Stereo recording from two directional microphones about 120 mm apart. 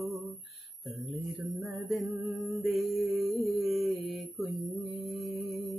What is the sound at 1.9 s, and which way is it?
Music, centre (ahead or behind).